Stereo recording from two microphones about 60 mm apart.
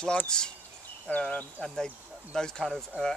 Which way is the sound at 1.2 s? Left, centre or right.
Left.